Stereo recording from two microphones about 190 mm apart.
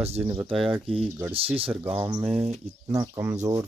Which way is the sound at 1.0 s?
10° right (ahead or behind).